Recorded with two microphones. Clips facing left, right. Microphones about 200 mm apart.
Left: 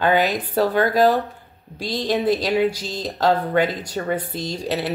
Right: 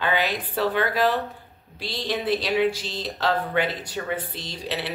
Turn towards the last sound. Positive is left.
turn(degrees=45)  # may be behind; listen again after turning